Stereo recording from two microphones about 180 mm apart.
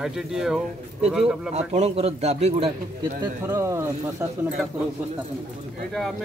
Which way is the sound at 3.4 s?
15° right (ahead or behind).